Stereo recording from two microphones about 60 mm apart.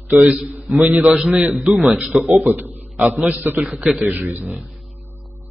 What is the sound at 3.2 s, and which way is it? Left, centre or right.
Speech, right.